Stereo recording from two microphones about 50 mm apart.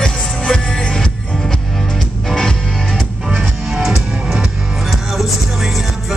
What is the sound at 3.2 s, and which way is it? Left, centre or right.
Music, centre.